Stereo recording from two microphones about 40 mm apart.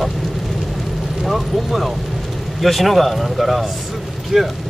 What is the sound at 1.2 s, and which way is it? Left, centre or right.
Speech, centre.